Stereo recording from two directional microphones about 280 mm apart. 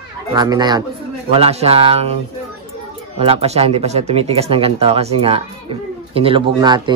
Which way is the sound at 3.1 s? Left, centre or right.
Right.